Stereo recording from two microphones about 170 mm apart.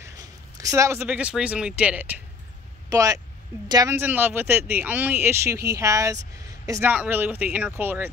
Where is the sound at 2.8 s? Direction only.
20° right (ahead or behind).